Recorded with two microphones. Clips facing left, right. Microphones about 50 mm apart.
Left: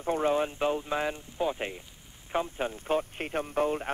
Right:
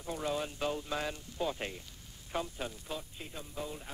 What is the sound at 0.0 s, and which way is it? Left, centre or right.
Speech, left.